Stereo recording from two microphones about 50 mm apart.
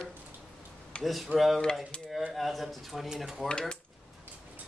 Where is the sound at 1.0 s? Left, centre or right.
Centre.